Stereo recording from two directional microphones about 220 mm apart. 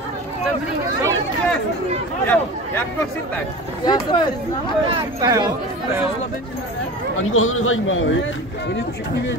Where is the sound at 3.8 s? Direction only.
20° left (ahead or behind).